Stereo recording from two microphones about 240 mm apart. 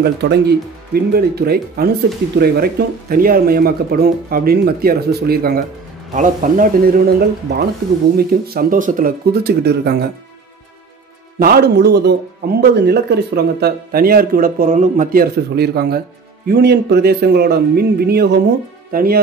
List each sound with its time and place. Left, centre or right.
0.0 s speech: right
11.3 s speech: right